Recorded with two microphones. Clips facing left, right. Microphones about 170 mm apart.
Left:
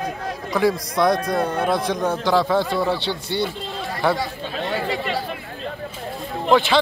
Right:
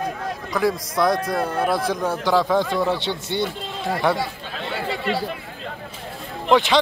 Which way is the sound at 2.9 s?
20° right (ahead or behind).